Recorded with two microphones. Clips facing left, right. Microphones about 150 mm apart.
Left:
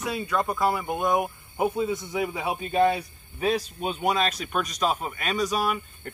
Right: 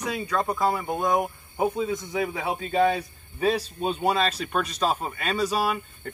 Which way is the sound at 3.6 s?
35° right (ahead or behind).